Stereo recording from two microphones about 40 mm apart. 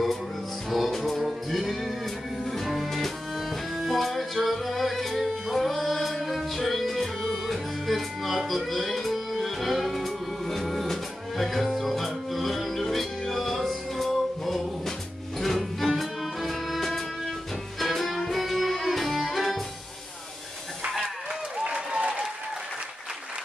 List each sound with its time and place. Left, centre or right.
0.7 s music: centre
21.6 s applause: right